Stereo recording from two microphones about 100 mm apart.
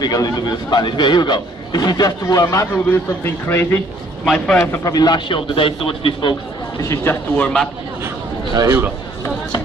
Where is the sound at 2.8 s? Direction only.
25° left (ahead or behind).